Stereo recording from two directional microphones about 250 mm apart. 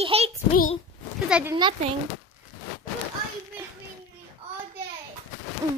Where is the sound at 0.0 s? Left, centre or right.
Right.